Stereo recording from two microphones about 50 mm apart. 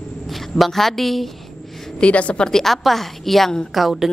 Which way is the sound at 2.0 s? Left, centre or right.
Left.